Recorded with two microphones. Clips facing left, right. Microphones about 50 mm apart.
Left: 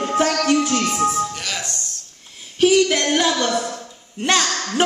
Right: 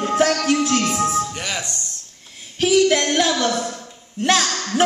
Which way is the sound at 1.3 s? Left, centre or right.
Centre.